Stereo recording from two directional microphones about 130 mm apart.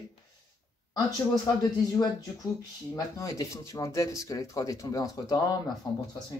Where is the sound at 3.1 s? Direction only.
25° left (ahead or behind).